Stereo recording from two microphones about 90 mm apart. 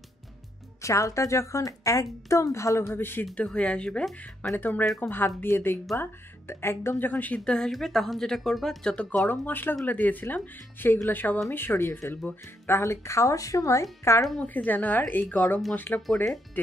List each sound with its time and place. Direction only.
0.8 s a woman's voice: 35° left (ahead or behind)
3.3 s speech: 10° left (ahead or behind)
4.6 s speech: 20° left (ahead or behind)
7.3 s speech: 10° left (ahead or behind)
9.5 s a woman's voice: 20° left (ahead or behind)
14.4 s speech: 20° left (ahead or behind)